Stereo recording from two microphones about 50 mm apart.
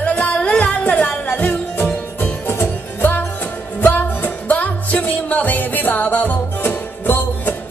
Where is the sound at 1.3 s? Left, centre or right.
Left.